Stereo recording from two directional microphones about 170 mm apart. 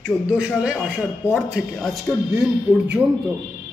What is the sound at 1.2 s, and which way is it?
Music, 10° left (ahead or behind).